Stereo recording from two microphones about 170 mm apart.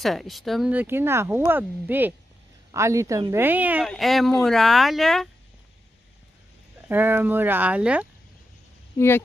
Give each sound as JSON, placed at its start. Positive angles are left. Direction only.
{"t": 0.0, "sound": "speech", "side_deg": 0}
{"t": 6.9, "sound": "speech", "side_deg": -10}
{"t": 8.9, "sound": "speech", "side_deg": 15}